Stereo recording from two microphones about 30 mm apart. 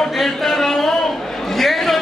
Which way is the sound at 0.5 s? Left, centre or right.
Centre.